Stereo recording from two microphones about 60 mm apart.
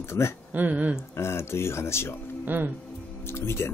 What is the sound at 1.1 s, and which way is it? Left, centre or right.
Speech, left.